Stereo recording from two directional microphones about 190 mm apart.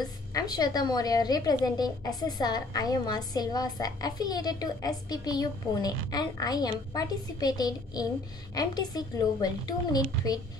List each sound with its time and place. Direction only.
0.0 s a woman's voice: 20° left (ahead or behind)